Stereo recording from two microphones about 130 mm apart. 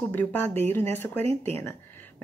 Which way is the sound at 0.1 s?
15° left (ahead or behind).